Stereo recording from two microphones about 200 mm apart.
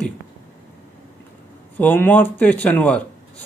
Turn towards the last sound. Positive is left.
turn(degrees=5)  # may be behind; listen again after turning